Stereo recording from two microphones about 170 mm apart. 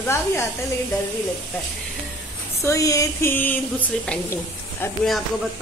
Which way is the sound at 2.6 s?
20° left (ahead or behind).